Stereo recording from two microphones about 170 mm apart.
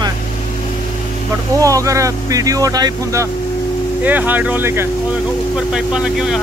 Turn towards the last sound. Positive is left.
turn(degrees=-5)  # may be behind; listen again after turning